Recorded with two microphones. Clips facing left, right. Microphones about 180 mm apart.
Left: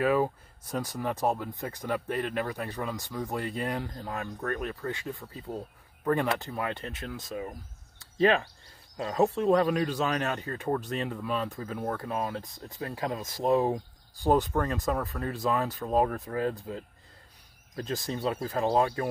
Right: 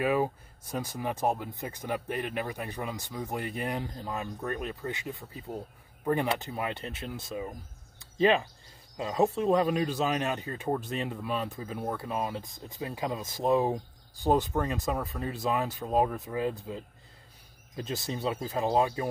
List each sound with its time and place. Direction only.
0.0 s speech: 15° right (ahead or behind)
0.7 s speech: 5° right (ahead or behind)
17.9 s speech: 5° right (ahead or behind)
18.2 s speech: 15° right (ahead or behind)